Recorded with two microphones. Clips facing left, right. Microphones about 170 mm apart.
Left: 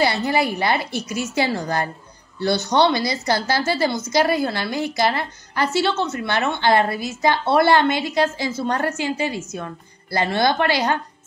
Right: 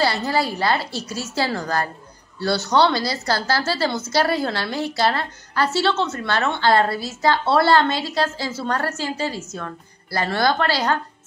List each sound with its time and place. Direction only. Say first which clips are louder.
0.0 s a woman's voice: left 1 dB; 20° left (ahead or behind)